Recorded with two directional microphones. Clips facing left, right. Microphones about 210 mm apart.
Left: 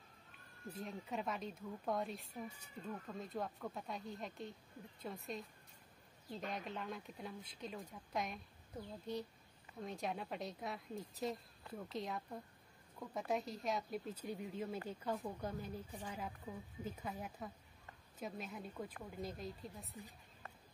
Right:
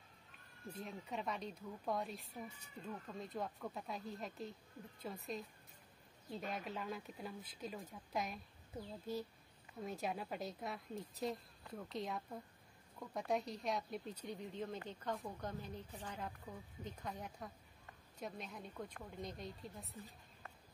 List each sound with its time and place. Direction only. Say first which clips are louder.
0.7 s speech: left 1 dB; 5° left (ahead or behind)
6.5 s speech: right 1 dB; 5° right (ahead or behind)